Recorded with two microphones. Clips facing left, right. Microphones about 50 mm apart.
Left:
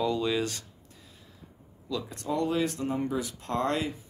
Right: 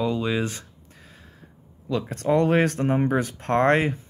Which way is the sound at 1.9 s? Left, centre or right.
Right.